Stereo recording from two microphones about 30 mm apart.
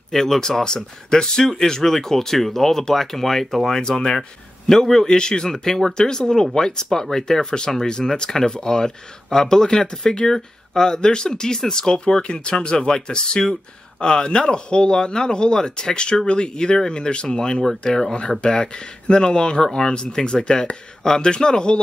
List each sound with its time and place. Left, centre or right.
0.1 s speech: centre
3.6 s speech: centre
7.7 s speech: centre
8.2 s speech: left
18.4 s speech: left